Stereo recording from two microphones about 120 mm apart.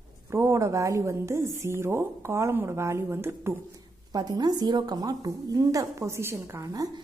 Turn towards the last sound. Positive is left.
turn(degrees=-25)  # may be behind; listen again after turning